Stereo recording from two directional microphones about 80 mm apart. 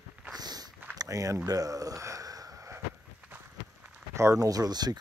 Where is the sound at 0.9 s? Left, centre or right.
Right.